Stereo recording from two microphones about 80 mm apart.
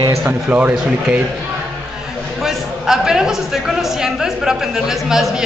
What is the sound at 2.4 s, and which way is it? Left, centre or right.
A man's voice, centre.